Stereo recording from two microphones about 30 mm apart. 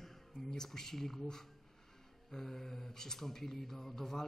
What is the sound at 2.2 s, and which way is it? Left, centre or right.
Mantra, centre.